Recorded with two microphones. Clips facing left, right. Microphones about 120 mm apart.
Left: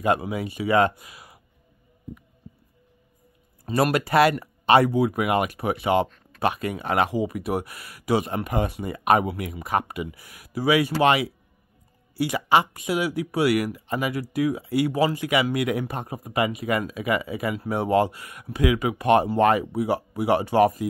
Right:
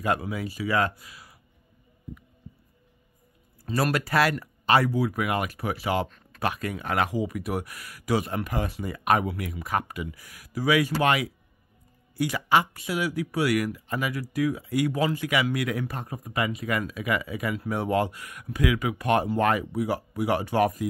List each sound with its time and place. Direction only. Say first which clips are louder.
0.0 s speech: left 4 dB; 10° left (ahead or behind)
3.6 s speech: left 4 dB; 15° left (ahead or behind)